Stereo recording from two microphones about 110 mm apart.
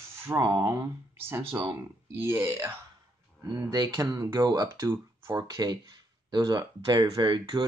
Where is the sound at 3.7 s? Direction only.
40° right (ahead or behind).